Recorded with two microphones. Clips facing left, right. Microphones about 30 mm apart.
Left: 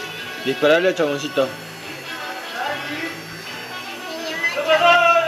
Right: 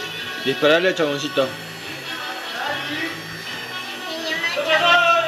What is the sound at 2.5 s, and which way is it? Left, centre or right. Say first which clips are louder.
Music: even; centre.